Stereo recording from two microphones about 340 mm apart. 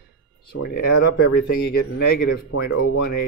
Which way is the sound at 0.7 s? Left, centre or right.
Left.